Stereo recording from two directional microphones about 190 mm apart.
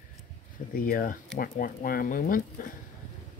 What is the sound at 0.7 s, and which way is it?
Speech, 50° left (ahead or behind).